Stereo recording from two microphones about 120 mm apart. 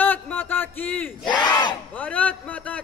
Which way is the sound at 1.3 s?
35° left (ahead or behind).